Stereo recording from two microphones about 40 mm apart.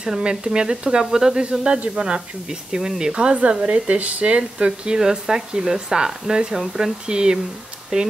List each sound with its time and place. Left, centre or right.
0.0 s speech: centre